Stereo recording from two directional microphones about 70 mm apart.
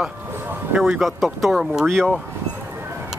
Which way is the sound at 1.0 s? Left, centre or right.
Centre.